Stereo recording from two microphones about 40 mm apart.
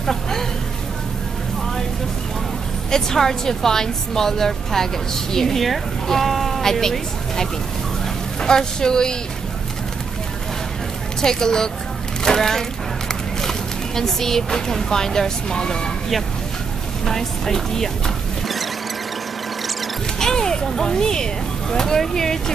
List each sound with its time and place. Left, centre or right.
0.0 s a sound: centre
2.9 s a woman's voice: centre
11.1 s a woman's voice: centre
12.2 s music: centre
13.1 s speech: centre
17.0 s a woman's voice: centre
20.2 s a woman's voice: centre